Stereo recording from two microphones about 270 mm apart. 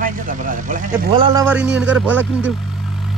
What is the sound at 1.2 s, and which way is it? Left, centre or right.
Speech, centre.